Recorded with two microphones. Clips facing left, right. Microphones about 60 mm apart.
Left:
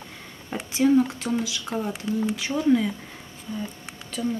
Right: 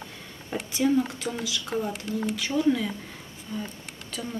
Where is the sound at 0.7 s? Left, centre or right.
Centre.